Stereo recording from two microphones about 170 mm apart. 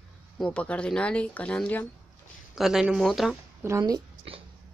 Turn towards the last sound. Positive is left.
turn(degrees=-20)  # may be behind; listen again after turning